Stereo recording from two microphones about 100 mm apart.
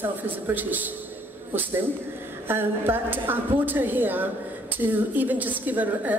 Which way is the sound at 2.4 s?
20° right (ahead or behind).